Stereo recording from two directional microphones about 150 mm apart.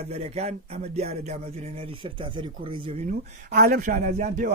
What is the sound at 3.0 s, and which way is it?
Speech, 75° right (ahead or behind).